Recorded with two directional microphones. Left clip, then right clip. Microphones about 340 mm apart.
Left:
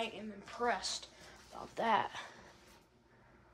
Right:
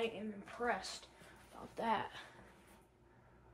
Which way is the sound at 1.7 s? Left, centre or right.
Left.